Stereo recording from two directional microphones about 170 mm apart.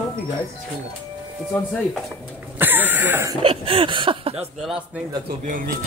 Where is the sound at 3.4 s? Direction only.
30° right (ahead or behind).